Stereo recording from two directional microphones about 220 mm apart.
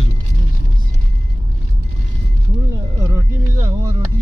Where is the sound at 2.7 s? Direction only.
15° right (ahead or behind).